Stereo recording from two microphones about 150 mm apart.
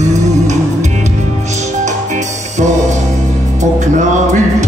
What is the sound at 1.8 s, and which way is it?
Music, 50° right (ahead or behind).